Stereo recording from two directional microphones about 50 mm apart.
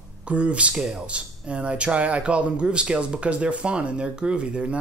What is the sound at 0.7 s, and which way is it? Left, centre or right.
Speech, centre.